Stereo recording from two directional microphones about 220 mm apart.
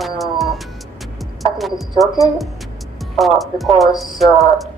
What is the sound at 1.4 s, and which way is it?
Music, centre (ahead or behind).